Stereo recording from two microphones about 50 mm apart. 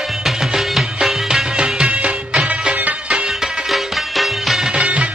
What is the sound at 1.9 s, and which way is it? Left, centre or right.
Music of bollywood, right.